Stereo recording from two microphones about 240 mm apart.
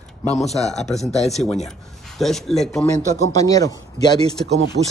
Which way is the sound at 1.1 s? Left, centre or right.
Left.